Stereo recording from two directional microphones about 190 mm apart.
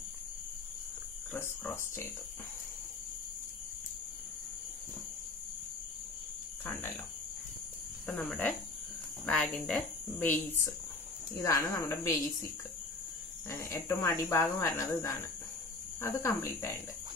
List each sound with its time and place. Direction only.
1.3 s speech: 10° left (ahead or behind)
8.1 s speech: 10° left (ahead or behind)
13.5 s speech: 15° left (ahead or behind)